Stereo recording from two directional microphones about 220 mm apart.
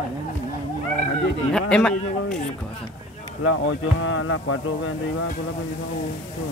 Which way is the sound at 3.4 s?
65° left (ahead or behind).